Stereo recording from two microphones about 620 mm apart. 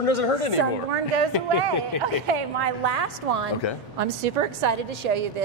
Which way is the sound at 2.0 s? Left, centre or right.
Right.